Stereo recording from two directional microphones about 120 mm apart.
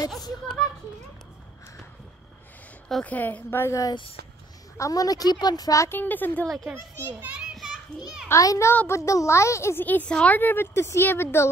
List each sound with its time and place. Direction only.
2.9 s a woman's voice: 10° left (ahead or behind)
6.6 s a child's voice: 15° right (ahead or behind)
8.3 s a child's voice: 25° left (ahead or behind)